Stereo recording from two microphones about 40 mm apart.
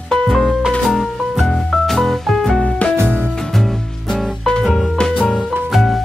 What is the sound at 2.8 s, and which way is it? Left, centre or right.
Music, left.